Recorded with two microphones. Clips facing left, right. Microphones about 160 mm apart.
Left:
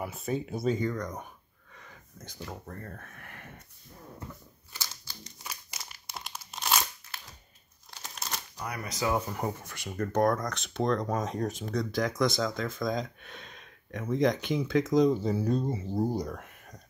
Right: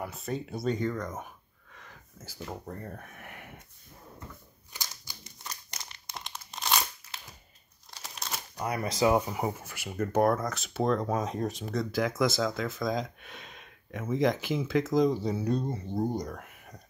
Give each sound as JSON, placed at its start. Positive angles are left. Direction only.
{"t": 0.0, "sound": "speech", "side_deg": 5}
{"t": 1.7, "sound": "a sound", "side_deg": 0}
{"t": 2.5, "sound": "speech", "side_deg": -15}
{"t": 5.1, "sound": "crumpling", "side_deg": -15}
{"t": 5.4, "sound": "crumpling", "side_deg": 5}
{"t": 7.9, "sound": "crumpling", "side_deg": 0}
{"t": 8.5, "sound": "speech", "side_deg": -25}
{"t": 9.3, "sound": "speech", "side_deg": -5}